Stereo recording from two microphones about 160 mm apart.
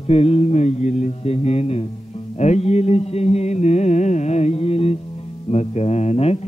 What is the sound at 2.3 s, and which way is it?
Mantra, 45° left (ahead or behind).